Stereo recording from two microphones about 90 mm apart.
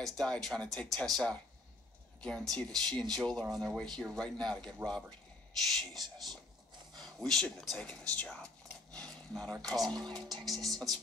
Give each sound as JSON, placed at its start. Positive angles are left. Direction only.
{"t": 0.0, "sound": "speech", "side_deg": 5}
{"t": 4.8, "sound": "speech", "side_deg": -30}
{"t": 5.7, "sound": "speech", "side_deg": 5}